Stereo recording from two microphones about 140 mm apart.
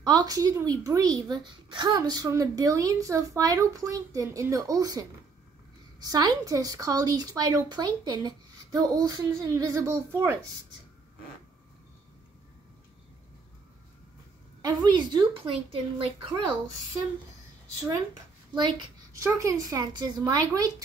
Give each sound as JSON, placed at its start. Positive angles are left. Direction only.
{"t": 0.0, "sound": "speech", "side_deg": -30}
{"t": 14.6, "sound": "a woman's voice", "side_deg": -30}
{"t": 15.7, "sound": "speech", "side_deg": -40}
{"t": 18.5, "sound": "a sound", "side_deg": -30}
{"t": 19.2, "sound": "speech", "side_deg": -20}